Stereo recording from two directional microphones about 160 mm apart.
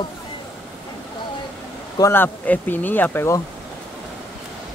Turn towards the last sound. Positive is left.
turn(degrees=15)  # may be behind; listen again after turning